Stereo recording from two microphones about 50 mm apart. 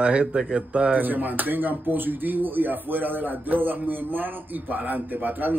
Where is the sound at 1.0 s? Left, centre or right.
Right.